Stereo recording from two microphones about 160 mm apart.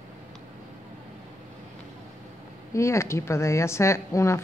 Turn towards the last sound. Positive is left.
turn(degrees=20)  # may be behind; listen again after turning